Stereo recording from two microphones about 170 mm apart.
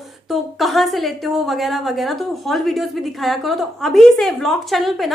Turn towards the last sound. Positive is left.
turn(degrees=0)  # may be behind; listen again after turning